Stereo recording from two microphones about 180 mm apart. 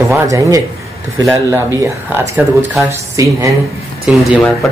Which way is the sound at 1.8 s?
15° right (ahead or behind).